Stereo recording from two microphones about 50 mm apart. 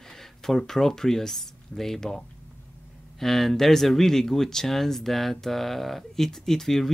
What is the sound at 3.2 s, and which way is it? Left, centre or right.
Speech, centre.